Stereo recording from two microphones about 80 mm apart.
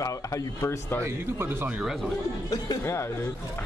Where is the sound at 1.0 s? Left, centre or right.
Right.